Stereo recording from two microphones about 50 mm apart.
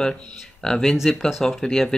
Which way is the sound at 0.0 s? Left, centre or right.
Centre.